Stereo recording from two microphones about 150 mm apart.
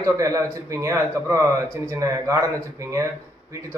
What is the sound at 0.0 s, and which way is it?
A man's voice, 20° right (ahead or behind).